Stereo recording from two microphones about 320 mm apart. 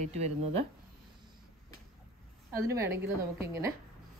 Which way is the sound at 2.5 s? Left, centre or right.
Centre.